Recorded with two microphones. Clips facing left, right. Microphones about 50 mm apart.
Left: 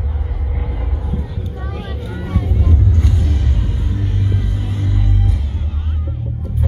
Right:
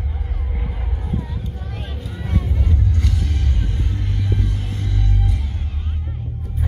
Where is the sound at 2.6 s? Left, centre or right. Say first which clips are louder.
Left 4 dB; left.